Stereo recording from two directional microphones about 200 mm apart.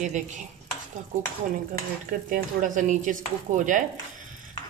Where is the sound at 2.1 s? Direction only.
40° right (ahead or behind).